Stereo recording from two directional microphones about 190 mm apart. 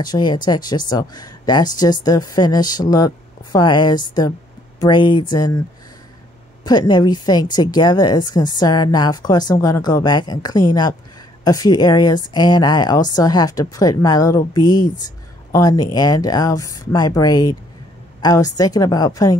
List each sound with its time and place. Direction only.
0.0 s speech: 20° left (ahead or behind)
6.6 s speech: 20° left (ahead or behind)